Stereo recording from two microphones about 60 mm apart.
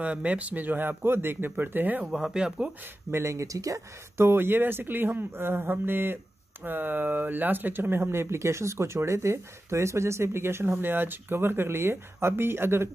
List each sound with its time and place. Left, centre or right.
0.0 s speech: right
2.0 s speech: centre
2.8 s speech: right
4.2 s speech: right